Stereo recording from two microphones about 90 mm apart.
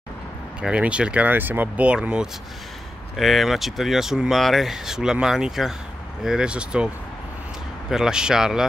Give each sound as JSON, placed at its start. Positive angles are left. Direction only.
{"t": 0.6, "sound": "speech", "side_deg": -10}
{"t": 3.2, "sound": "speech", "side_deg": 0}
{"t": 7.9, "sound": "speech", "side_deg": -5}